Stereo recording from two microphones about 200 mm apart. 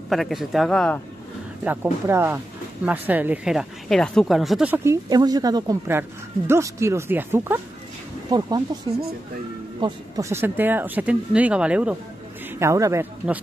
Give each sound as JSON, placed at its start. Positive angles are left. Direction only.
{"t": 0.1, "sound": "speech", "side_deg": 0}
{"t": 1.6, "sound": "speech", "side_deg": -10}
{"t": 9.8, "sound": "a man's voice", "side_deg": -20}